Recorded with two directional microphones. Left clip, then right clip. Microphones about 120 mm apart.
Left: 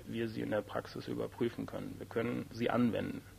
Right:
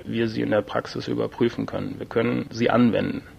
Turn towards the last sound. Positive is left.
turn(degrees=-30)  # may be behind; listen again after turning